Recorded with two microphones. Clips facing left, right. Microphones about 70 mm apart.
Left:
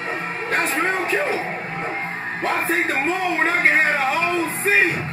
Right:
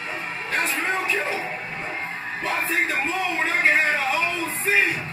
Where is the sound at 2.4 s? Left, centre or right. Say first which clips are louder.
Left 3 dB; left.